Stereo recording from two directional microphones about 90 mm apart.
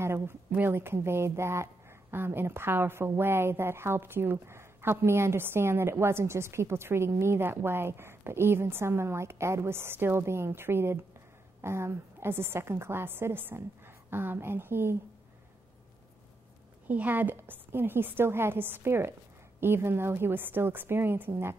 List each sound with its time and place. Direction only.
0.0 s a woman's voice: 30° right (ahead or behind)
16.8 s a woman's voice: 20° right (ahead or behind)